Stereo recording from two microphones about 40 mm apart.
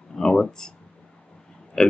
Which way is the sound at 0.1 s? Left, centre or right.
Centre.